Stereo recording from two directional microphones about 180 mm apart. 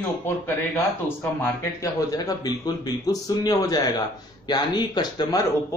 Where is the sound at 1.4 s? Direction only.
20° left (ahead or behind).